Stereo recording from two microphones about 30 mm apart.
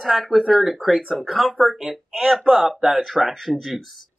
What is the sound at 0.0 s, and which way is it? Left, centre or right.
Speech, centre.